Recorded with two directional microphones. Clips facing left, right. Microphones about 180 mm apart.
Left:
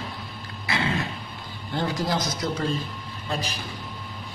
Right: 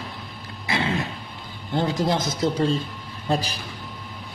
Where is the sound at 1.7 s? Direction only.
20° right (ahead or behind).